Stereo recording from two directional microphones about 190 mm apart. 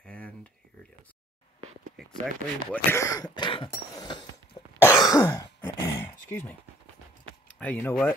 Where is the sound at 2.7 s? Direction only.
15° left (ahead or behind).